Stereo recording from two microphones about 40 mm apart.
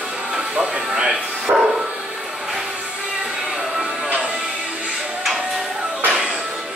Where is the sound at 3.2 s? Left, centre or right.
Centre.